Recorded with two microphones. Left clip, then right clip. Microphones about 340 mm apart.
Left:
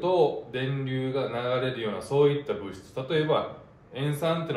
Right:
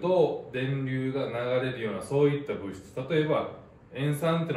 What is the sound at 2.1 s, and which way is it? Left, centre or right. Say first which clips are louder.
Speech: left 3 dB; centre.